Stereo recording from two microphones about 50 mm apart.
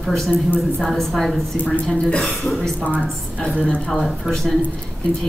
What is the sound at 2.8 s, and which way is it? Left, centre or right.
Speech, left.